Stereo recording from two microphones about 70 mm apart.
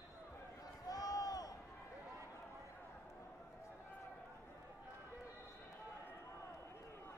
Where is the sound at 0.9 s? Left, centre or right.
Left.